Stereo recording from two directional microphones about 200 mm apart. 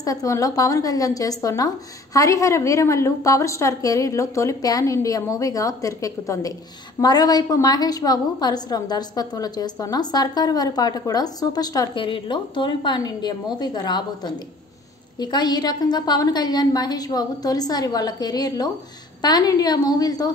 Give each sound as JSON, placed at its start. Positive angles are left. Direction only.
{"t": 0.0, "sound": "a woman's voice", "side_deg": 15}